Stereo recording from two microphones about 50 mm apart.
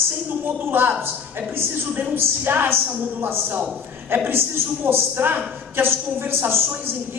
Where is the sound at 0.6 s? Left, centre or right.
Right.